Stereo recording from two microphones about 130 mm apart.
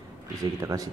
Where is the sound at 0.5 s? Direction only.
25° right (ahead or behind).